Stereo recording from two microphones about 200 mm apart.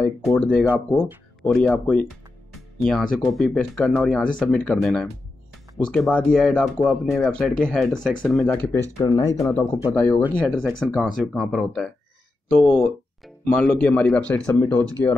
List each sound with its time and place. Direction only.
0.2 s speech: 5° left (ahead or behind)